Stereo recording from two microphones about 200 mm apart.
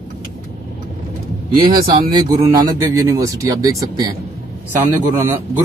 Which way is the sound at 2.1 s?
20° right (ahead or behind).